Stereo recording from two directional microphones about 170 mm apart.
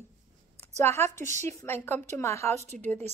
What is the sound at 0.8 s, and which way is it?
Speech, 15° left (ahead or behind).